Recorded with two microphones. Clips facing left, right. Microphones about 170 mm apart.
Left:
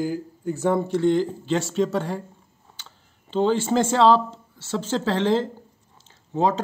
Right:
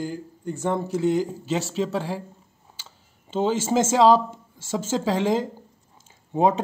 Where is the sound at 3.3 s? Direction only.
5° right (ahead or behind).